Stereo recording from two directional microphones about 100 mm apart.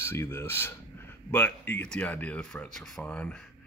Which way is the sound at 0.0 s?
25° left (ahead or behind).